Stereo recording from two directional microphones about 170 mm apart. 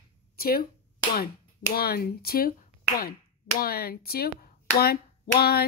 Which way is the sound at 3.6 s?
65° left (ahead or behind).